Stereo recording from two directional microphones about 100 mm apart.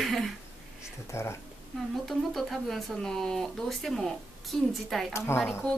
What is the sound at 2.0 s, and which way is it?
Speech, centre (ahead or behind).